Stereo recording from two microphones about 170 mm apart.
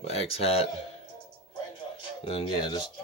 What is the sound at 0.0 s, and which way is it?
Speech, 35° left (ahead or behind).